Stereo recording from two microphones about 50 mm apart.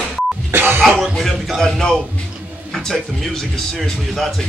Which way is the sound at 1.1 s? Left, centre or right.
Centre.